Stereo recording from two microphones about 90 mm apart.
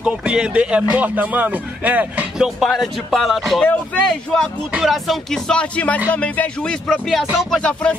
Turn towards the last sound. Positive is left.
turn(degrees=10)  # may be behind; listen again after turning